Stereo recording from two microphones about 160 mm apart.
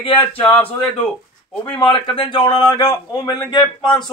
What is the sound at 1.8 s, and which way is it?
A man's voice, 30° left (ahead or behind).